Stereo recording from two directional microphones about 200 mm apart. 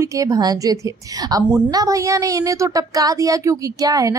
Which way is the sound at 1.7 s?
15° right (ahead or behind).